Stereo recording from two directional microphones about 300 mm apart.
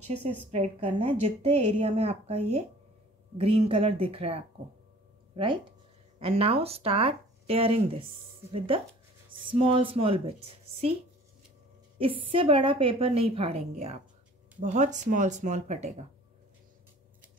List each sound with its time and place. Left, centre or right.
0.5 s a woman's voice: right
12.0 s a woman's voice: centre